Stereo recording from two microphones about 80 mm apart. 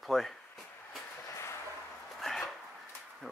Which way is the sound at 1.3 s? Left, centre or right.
Left.